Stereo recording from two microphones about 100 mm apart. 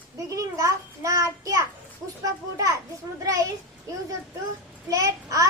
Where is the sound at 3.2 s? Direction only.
35° right (ahead or behind).